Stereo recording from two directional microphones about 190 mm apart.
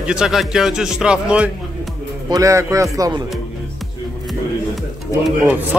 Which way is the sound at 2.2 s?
15° right (ahead or behind).